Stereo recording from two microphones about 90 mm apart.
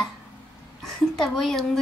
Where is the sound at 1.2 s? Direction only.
Centre (ahead or behind).